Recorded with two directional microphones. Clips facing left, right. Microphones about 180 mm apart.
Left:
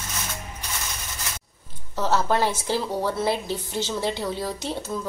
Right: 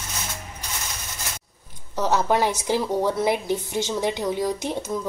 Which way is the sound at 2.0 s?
15° right (ahead or behind).